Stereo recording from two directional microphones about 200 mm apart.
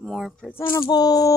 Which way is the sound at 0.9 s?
20° left (ahead or behind).